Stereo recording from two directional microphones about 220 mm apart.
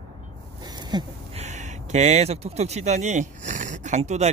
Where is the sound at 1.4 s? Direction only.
35° right (ahead or behind).